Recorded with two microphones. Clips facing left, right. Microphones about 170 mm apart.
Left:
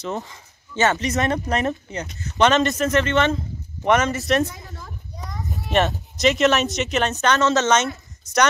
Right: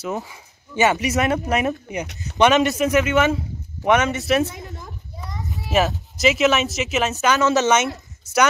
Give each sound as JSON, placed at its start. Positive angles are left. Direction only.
{"t": 0.0, "sound": "speech", "side_deg": -5}
{"t": 4.6, "sound": "children playing", "side_deg": -20}
{"t": 5.2, "sound": "a child's voice", "side_deg": 0}